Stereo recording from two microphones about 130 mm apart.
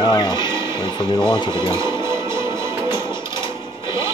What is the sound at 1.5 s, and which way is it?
Music, 20° right (ahead or behind).